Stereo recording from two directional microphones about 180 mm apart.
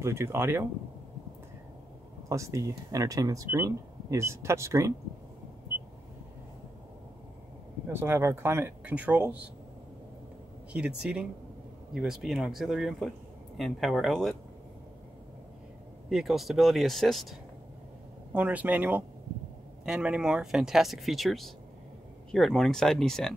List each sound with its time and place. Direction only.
0.0 s speech: 15° right (ahead or behind)
2.2 s speech: 15° right (ahead or behind)
7.9 s speech: 15° right (ahead or behind)
10.7 s speech: 5° right (ahead or behind)
16.1 s speech: centre (ahead or behind)